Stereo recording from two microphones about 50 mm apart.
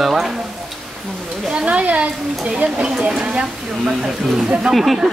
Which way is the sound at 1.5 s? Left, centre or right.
Right.